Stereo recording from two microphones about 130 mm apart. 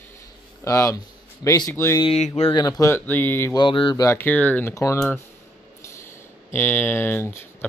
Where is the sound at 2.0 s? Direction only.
50° left (ahead or behind).